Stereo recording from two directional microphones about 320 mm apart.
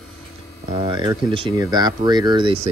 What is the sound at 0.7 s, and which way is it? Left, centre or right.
Speech, centre.